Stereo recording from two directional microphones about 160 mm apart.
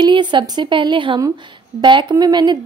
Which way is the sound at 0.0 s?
30° right (ahead or behind).